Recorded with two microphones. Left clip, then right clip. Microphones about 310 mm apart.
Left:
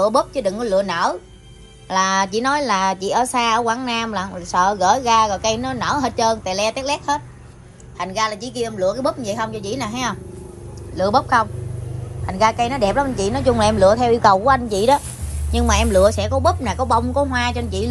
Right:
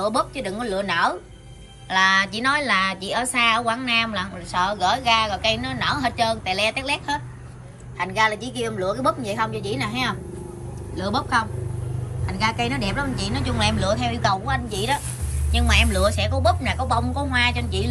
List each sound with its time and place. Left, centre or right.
0.0 s a woman's voice: centre
12.4 s a woman's voice: left
13.7 s a woman's voice: centre